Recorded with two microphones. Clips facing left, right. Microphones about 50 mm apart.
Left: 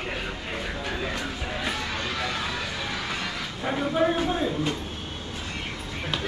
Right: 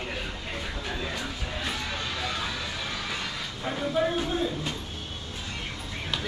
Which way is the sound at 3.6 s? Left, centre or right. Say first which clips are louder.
Left 3 dB; centre.